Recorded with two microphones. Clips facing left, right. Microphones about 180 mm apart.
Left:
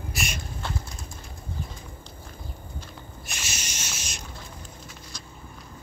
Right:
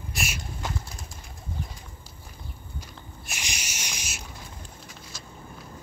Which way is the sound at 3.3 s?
15° right (ahead or behind).